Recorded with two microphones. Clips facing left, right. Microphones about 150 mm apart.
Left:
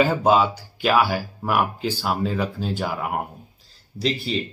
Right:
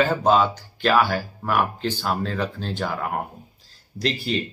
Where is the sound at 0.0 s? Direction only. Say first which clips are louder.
Left 1 dB; 10° left (ahead or behind).